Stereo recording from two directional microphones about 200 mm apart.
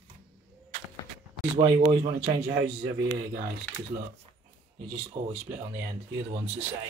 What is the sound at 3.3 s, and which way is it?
Speech, 45° right (ahead or behind).